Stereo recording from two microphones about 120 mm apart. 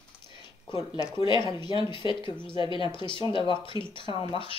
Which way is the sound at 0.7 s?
35° left (ahead or behind).